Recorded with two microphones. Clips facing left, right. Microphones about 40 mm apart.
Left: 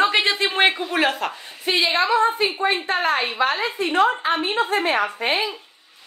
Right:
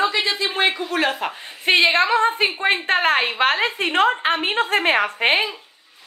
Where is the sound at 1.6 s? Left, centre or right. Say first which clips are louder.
Right 4 dB; right.